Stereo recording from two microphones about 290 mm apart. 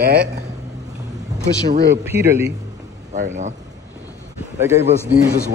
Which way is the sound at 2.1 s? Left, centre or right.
Centre.